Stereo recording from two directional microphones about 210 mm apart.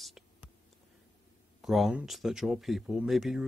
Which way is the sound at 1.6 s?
Centre (ahead or behind).